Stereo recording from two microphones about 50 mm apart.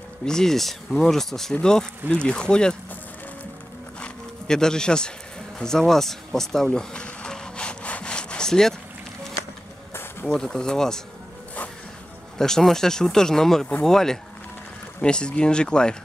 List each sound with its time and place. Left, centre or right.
0.2 s speech: centre
4.5 s speech: centre
5.6 s a sound: centre
10.2 s speech: centre
12.4 s speech: centre